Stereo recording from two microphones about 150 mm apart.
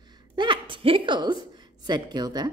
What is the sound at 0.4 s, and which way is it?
A woman's voice, 35° right (ahead or behind).